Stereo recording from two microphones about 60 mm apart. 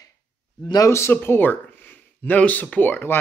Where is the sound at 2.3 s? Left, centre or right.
Left.